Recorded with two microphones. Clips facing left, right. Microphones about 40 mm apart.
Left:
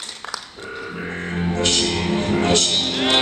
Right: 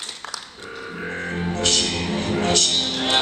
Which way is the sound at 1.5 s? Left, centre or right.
Left.